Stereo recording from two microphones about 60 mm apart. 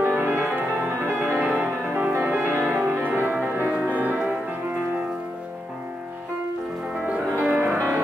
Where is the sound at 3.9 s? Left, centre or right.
Right.